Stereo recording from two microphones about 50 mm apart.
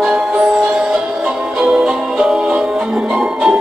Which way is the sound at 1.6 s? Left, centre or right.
Centre.